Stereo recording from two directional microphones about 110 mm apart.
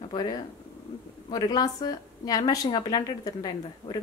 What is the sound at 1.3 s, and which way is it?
A woman's voice, 35° left (ahead or behind).